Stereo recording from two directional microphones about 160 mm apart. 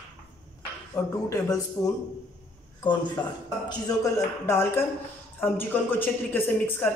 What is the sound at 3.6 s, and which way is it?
A woman's voice, 20° left (ahead or behind).